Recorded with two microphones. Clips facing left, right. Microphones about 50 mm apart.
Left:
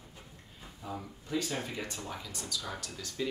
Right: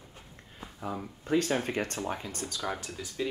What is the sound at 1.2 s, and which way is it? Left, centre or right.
Speech, right.